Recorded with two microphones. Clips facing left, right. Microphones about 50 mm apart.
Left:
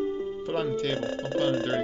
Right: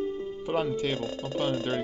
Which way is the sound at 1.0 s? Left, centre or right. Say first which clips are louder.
Left 3 dB; left.